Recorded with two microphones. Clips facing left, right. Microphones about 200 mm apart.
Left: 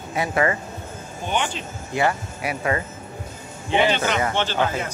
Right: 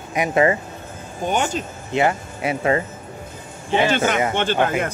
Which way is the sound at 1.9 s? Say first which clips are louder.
Right 3 dB; 25° right (ahead or behind).